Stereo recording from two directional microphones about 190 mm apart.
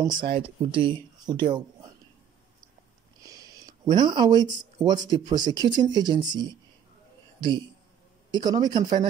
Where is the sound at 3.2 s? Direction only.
20° right (ahead or behind).